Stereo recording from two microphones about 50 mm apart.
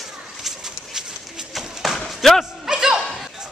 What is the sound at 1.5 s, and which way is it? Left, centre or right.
Run, centre.